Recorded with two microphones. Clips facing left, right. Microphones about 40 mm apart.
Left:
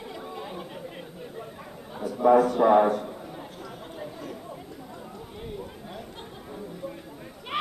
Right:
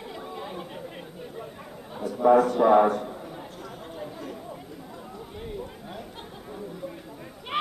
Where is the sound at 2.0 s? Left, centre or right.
Centre.